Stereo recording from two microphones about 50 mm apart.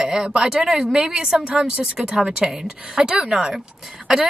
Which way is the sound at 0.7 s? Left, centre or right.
Centre.